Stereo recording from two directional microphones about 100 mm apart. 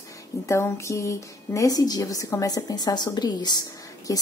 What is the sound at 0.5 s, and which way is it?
A woman's voice, 30° left (ahead or behind).